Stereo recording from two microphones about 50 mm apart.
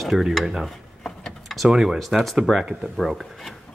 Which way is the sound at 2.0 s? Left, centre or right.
Centre.